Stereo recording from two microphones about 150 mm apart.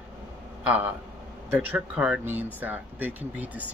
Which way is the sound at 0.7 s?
10° right (ahead or behind).